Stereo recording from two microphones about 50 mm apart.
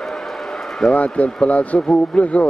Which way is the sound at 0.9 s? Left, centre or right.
Left.